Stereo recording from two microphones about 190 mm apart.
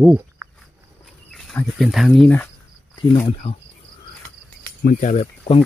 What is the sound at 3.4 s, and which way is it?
Speech, 30° left (ahead or behind).